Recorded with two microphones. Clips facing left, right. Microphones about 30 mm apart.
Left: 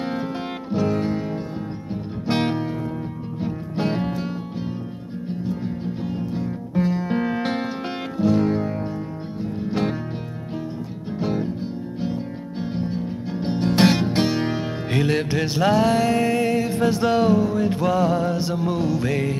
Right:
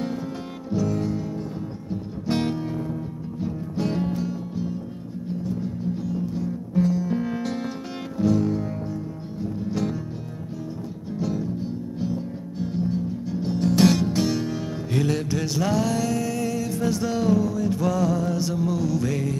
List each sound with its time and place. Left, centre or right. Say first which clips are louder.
0.7 s music: left 2 dB; left
2.2 s music: left 3 dB; left
11.1 s music: left 3 dB; left